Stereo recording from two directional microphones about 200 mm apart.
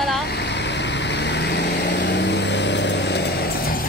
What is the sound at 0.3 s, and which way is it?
Vehicle, 60° left (ahead or behind).